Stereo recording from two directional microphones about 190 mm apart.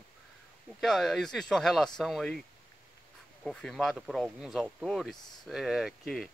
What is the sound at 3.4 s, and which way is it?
Speech, centre (ahead or behind).